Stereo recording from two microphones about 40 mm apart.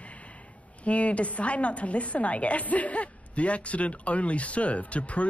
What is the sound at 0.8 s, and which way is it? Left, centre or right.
A woman's voice, left.